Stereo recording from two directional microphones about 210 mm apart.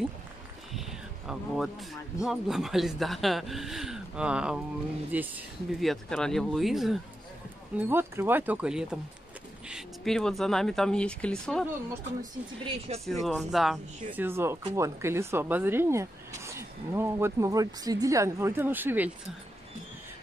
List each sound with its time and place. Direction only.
0.7 s a sound: centre (ahead or behind)
2.2 s speech: centre (ahead or behind)
12.2 s speech: 25° right (ahead or behind)
13.0 s speech: centre (ahead or behind)